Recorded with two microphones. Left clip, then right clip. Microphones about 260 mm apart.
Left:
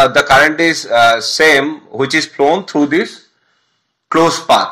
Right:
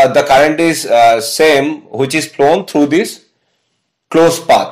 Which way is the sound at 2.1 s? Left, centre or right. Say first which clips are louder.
Right 2 dB; right.